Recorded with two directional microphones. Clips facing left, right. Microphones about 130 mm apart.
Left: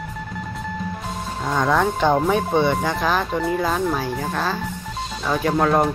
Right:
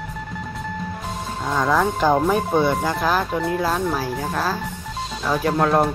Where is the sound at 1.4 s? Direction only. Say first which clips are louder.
Even; centre (ahead or behind).